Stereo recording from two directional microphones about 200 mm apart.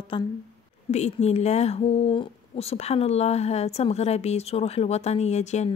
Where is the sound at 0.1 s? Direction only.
25° left (ahead or behind).